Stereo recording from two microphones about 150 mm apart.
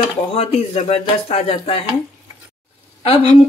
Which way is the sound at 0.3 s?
40° left (ahead or behind).